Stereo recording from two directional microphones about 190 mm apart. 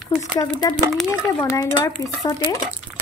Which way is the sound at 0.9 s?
Centre (ahead or behind).